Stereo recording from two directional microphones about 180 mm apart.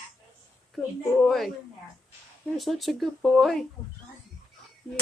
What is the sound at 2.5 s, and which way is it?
Speech, centre (ahead or behind).